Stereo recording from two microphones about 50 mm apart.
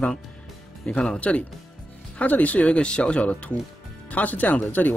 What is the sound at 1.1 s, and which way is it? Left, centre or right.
Speech, left.